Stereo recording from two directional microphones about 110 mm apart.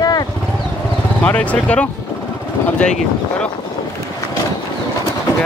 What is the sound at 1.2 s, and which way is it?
Speech, 10° left (ahead or behind).